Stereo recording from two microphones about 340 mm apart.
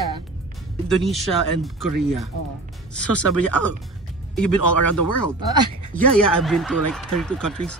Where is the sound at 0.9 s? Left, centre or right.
Centre.